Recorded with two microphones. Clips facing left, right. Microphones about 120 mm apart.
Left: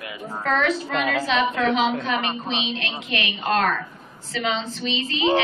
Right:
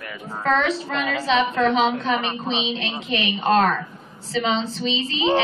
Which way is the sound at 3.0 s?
30° right (ahead or behind).